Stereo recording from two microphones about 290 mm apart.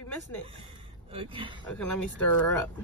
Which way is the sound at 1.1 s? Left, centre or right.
Centre.